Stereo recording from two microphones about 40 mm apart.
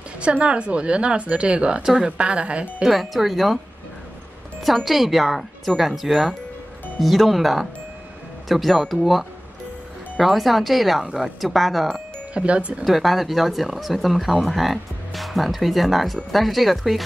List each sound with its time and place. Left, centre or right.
0.2 s a woman's voice: right
2.8 s speech: centre
4.8 s speech: centre
10.1 s speech: centre
12.4 s a woman's voice: right
12.8 s speech: centre